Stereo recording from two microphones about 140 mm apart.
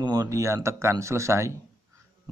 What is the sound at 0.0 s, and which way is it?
A man's voice, 30° right (ahead or behind).